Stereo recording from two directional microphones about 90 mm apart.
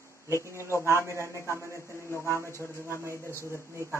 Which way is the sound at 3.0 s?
30° right (ahead or behind).